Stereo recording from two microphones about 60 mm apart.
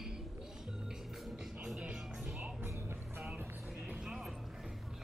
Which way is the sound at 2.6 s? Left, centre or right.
Right.